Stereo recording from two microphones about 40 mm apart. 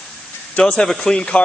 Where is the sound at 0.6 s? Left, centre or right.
Left.